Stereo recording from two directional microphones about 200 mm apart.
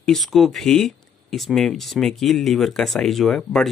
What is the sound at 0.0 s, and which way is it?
Speech, centre (ahead or behind).